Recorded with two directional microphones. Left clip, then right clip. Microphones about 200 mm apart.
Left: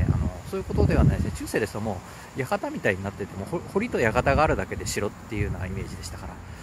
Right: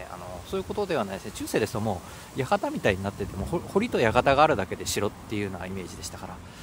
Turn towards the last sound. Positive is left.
turn(degrees=-15)  # may be behind; listen again after turning